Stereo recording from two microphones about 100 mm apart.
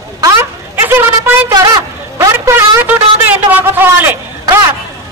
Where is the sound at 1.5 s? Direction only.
40° right (ahead or behind).